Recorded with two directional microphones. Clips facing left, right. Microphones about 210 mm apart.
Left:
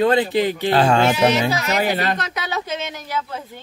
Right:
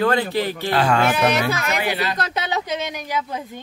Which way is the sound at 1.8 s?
45° left (ahead or behind).